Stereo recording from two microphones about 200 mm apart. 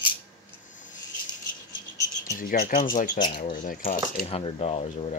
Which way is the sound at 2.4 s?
45° left (ahead or behind).